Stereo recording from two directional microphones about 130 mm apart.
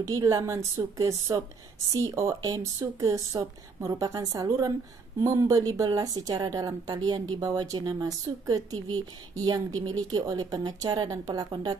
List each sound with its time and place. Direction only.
0.0 s a woman's voice: 25° right (ahead or behind)